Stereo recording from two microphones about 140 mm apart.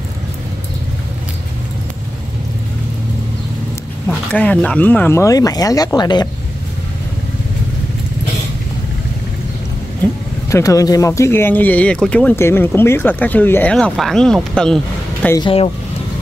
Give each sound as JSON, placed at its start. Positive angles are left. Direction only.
{"t": 4.3, "sound": "speech", "side_deg": 10}
{"t": 10.5, "sound": "speech", "side_deg": 25}